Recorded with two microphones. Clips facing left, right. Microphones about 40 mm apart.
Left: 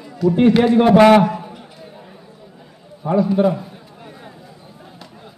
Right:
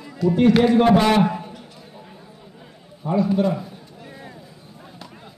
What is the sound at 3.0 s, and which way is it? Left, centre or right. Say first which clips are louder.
Speech: left 4 dB; left.